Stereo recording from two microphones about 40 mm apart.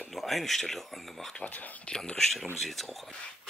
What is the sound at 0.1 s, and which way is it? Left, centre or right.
Speech, centre.